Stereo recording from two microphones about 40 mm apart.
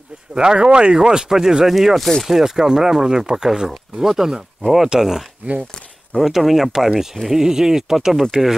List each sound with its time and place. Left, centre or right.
0.3 s speech: centre
4.9 s speech: centre
5.4 s speech: right
6.1 s speech: centre